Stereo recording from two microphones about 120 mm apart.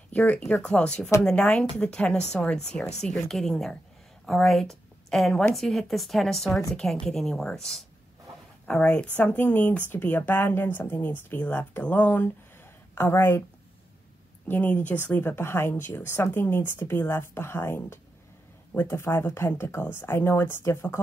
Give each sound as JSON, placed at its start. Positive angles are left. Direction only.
{"t": 0.1, "sound": "a woman's voice", "side_deg": 10}
{"t": 14.5, "sound": "speech", "side_deg": 15}